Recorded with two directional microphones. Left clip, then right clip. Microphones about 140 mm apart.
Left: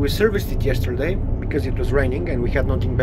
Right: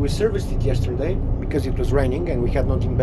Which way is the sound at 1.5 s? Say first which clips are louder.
Left 1 dB; 15° right (ahead or behind).